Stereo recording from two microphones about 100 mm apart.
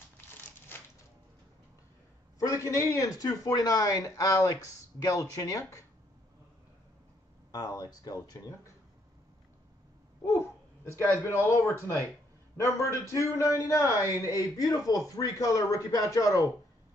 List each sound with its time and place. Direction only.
2.3 s a man's voice: 35° left (ahead or behind)
7.5 s a man's voice: 35° left (ahead or behind)
10.2 s a sound: 25° left (ahead or behind)
11.0 s a man's voice: 25° left (ahead or behind)